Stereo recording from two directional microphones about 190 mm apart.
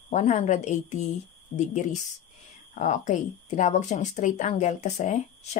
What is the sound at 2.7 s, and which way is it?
Speech, 40° left (ahead or behind).